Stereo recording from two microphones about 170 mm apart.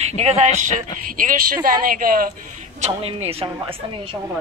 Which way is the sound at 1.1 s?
55° right (ahead or behind).